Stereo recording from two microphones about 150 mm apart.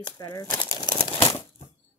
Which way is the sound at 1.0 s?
25° left (ahead or behind).